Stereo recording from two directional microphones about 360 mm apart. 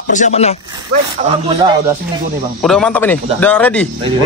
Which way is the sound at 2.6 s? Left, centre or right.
Centre.